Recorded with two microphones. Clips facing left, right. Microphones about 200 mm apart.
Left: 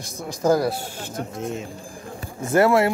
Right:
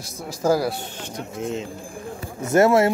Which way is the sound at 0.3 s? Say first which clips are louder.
Left 1 dB; 5° right (ahead or behind).